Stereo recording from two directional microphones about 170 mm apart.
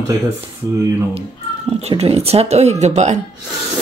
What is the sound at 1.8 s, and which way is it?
Speech, 35° right (ahead or behind).